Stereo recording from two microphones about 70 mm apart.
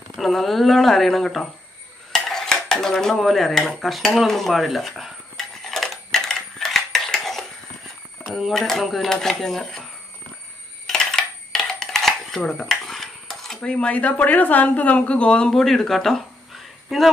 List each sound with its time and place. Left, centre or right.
0.1 s speech: centre
2.1 s dishes: centre
8.3 s speech: centre
10.9 s coin: centre
13.6 s speech: centre
15.5 s speech: centre